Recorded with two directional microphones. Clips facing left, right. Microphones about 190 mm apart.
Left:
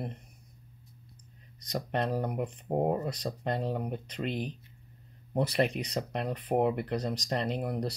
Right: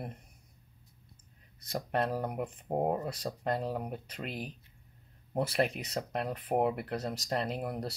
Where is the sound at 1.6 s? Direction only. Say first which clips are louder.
Even; 5° right (ahead or behind).